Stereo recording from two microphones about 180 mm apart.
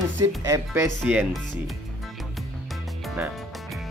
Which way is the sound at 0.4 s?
15° right (ahead or behind).